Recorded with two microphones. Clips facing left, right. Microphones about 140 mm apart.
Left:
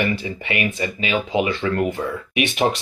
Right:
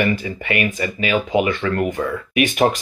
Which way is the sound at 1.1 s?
45° right (ahead or behind).